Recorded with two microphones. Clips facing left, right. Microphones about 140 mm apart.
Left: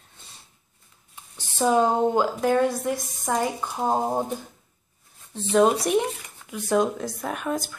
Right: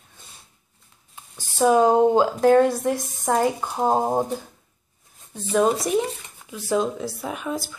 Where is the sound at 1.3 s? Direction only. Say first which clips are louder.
Right 3 dB; 15° right (ahead or behind).